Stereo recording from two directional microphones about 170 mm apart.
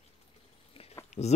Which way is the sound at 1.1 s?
40° left (ahead or behind).